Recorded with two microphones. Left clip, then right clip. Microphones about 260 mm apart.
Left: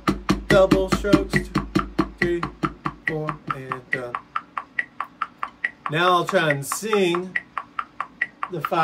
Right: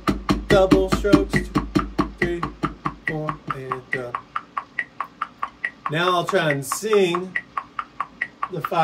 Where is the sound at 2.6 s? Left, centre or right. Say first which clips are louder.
Even; centre.